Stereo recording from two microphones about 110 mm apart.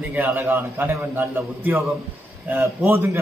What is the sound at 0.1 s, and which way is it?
A man's voice, 25° right (ahead or behind).